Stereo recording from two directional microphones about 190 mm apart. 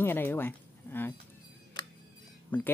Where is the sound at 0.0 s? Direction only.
10° left (ahead or behind).